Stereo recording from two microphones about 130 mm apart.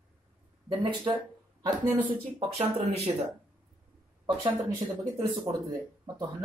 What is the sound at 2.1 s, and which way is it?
Speech, 45° right (ahead or behind).